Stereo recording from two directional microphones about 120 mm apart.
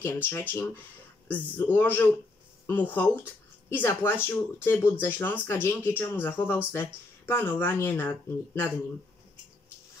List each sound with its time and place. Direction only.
0.0 s speech: 20° left (ahead or behind)